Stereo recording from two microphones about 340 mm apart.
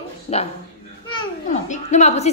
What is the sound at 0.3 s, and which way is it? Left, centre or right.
Speech, centre.